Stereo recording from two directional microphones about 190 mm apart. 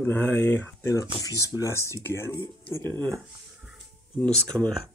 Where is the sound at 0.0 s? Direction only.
10° left (ahead or behind).